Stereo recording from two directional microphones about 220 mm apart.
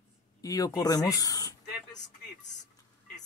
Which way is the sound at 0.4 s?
15° left (ahead or behind).